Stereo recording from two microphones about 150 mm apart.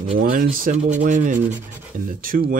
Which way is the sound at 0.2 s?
70° right (ahead or behind).